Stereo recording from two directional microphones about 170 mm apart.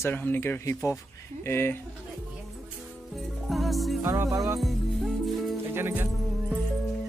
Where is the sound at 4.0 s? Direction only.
15° right (ahead or behind).